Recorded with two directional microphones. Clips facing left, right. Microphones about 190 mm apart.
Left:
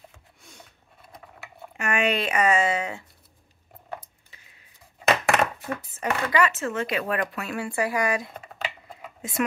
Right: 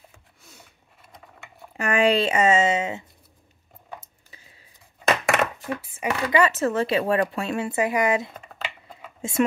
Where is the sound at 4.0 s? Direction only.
30° right (ahead or behind).